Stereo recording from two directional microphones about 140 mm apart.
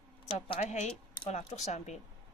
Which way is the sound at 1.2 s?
55° left (ahead or behind).